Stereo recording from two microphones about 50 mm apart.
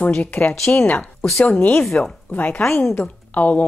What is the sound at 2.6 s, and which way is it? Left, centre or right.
Speech, left.